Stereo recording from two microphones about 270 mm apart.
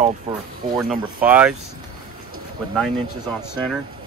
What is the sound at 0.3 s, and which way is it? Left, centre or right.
Speech, right.